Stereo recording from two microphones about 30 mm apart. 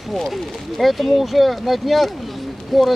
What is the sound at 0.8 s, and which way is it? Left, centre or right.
Speech, centre.